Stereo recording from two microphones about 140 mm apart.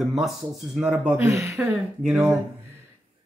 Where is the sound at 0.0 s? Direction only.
Centre (ahead or behind).